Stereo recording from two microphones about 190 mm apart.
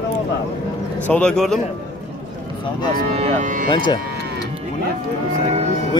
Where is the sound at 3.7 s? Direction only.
25° left (ahead or behind).